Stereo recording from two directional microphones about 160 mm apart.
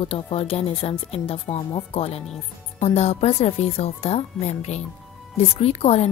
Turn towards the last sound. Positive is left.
turn(degrees=40)  # may be behind; listen again after turning